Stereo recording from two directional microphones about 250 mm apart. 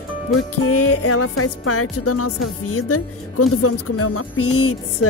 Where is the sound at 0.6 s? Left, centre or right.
Left.